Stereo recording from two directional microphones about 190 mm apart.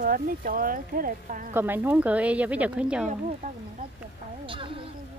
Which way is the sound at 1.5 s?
10° right (ahead or behind).